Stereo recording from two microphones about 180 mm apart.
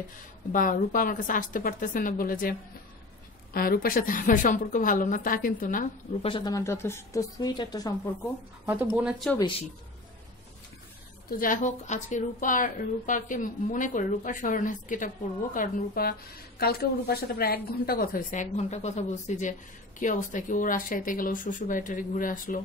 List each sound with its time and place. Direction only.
0.5 s a woman's voice: 50° left (ahead or behind)
3.5 s a woman's voice: 55° left (ahead or behind)
6.2 s a woman's voice: 25° left (ahead or behind)
8.9 s speech: 5° right (ahead or behind)
11.2 s a woman's voice: 50° left (ahead or behind)